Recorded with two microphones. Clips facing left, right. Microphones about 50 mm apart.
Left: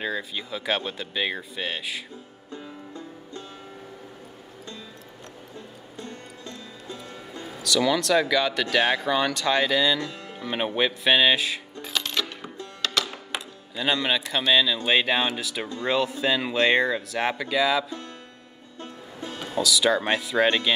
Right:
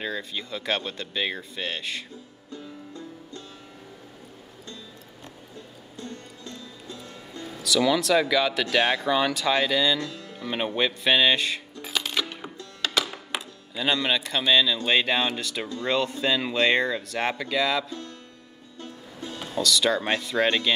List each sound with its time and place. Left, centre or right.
0.0 s speech: centre
2.5 s music: left
5.9 s music: left
7.6 s speech: centre
10.1 s music: left
10.4 s speech: centre
11.8 s coin: centre
12.8 s speech: centre
18.8 s music: left
19.6 s speech: centre